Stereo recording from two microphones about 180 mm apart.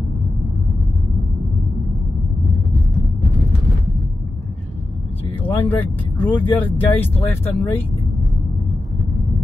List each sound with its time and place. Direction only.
5.4 s speech: 10° left (ahead or behind)